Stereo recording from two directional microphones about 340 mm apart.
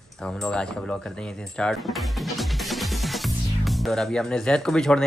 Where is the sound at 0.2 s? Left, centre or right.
Centre.